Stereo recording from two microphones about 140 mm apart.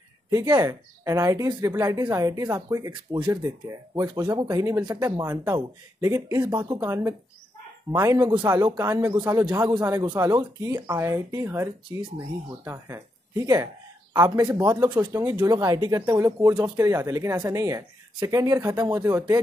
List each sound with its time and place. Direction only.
0.3 s speech: 25° right (ahead or behind)
5.2 s speech: 15° right (ahead or behind)
8.5 s speech: 30° right (ahead or behind)
8.8 s speech: 15° right (ahead or behind)
9.6 s speech: 30° right (ahead or behind)